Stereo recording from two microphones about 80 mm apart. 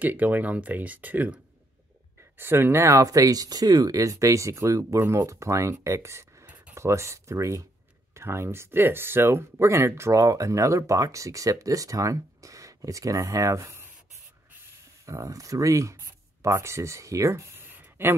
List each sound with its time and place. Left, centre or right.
0.0 s speech: right
15.0 s speech: right